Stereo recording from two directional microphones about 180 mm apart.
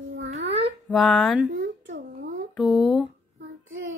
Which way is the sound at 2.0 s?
50° right (ahead or behind).